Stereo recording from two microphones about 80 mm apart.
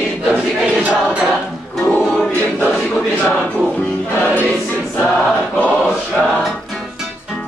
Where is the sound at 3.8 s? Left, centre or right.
Centre.